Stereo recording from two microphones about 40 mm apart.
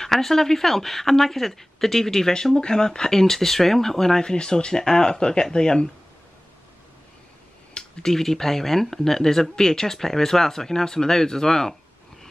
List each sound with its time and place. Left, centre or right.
0.0 s speech: centre
8.0 s speech: centre